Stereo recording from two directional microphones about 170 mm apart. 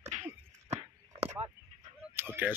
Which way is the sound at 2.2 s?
10° right (ahead or behind).